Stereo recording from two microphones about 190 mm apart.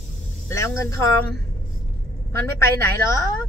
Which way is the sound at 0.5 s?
15° left (ahead or behind).